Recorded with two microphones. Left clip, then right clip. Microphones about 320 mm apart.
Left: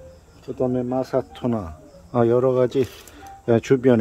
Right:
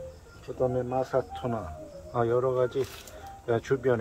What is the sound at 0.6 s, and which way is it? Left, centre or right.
Speech, left.